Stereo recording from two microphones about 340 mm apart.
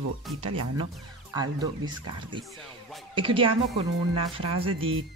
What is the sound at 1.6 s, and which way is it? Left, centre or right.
Speech, centre.